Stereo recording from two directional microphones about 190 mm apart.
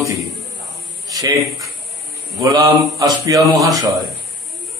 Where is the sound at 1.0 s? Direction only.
20° right (ahead or behind).